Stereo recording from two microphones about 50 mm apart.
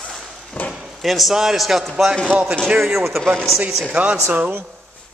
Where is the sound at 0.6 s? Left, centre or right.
Left.